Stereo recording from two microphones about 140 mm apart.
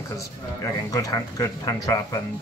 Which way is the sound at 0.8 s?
25° left (ahead or behind).